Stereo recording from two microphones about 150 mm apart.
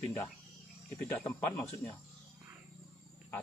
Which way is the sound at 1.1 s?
15° left (ahead or behind).